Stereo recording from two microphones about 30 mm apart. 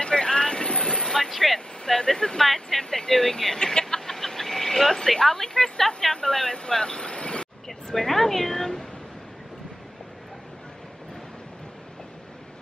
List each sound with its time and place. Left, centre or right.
0.0 s vehicle: left
1.0 s vehicle: centre
1.3 s speech: centre
1.9 s speech: left
3.9 s speech: centre; by 7.4 s left
7.6 s speech: centre